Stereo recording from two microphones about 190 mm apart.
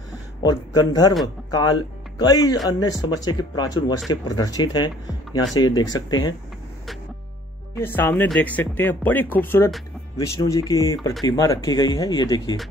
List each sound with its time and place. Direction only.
0.4 s speech: 20° left (ahead or behind)
7.7 s speech: 10° left (ahead or behind)